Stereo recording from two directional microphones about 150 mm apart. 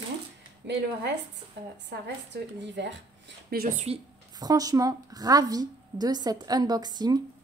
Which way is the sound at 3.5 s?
90° right.